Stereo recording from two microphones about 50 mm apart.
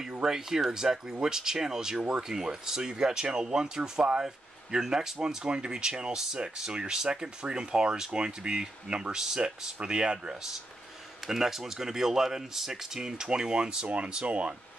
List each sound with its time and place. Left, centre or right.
0.0 s speech: centre